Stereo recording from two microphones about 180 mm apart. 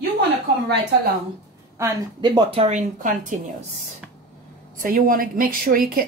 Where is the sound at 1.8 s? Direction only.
25° right (ahead or behind); by 3.4 s 45° right (ahead or behind).